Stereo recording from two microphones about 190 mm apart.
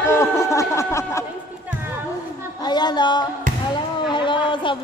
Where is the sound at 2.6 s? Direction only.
20° left (ahead or behind).